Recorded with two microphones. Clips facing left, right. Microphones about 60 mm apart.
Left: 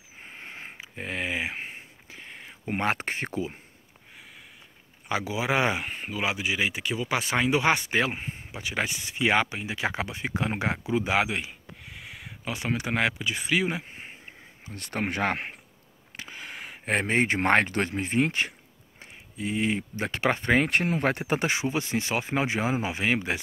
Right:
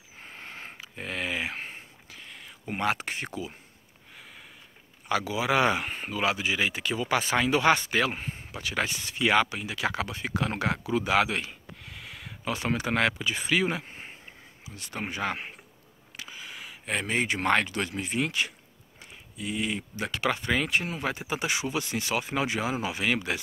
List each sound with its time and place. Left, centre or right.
0.2 s a sound: centre
2.0 s a sound: left
5.0 s speech: left
5.9 s speech: centre
14.7 s speech: left
21.5 s speech: left